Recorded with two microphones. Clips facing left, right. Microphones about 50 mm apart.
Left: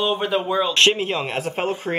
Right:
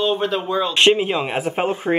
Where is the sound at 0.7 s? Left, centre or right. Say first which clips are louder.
Right 6 dB; centre.